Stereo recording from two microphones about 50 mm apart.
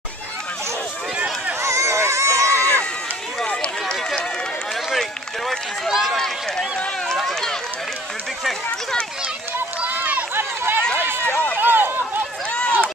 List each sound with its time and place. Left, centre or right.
1.6 s a sound: right
2.5 s run: left
5.9 s run: centre
6.1 s run: centre
10.3 s run: right
11.2 s run: left
11.5 s run: right
12.4 s run: left